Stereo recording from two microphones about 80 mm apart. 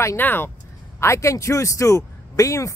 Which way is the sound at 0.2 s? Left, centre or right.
Left.